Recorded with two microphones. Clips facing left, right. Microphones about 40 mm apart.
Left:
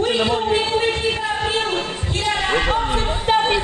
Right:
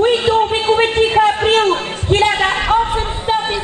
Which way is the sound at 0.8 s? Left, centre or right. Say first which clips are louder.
Right 8 dB; right.